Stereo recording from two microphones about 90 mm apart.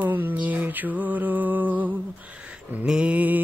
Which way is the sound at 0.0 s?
20° right (ahead or behind).